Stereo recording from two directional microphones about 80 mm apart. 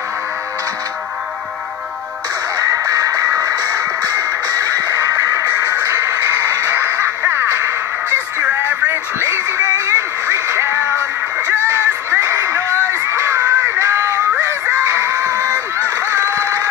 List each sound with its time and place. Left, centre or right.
2.6 s music: right